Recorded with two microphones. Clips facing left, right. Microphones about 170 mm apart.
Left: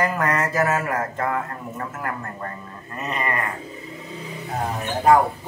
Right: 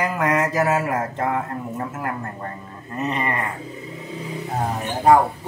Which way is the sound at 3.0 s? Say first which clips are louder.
Right 4 dB; 25° right (ahead or behind).